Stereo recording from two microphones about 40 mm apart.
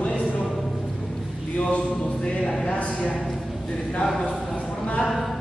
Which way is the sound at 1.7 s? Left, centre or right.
Left.